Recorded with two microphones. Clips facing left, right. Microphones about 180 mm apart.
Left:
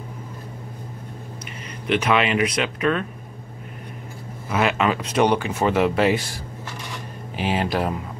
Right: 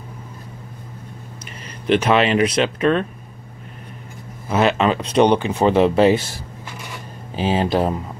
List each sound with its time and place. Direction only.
1.9 s speech: 30° right (ahead or behind)
4.5 s speech: 30° right (ahead or behind)
7.3 s speech: 30° right (ahead or behind)